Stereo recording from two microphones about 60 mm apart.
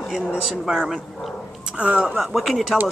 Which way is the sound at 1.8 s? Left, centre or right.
Right.